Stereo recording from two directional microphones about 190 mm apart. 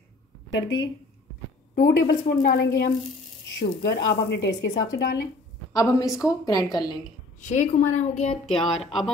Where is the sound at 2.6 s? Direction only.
70° left (ahead or behind).